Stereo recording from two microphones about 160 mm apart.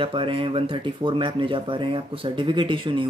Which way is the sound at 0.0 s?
35° right (ahead or behind).